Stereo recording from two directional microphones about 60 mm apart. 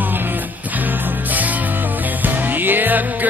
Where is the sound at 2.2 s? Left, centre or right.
Right.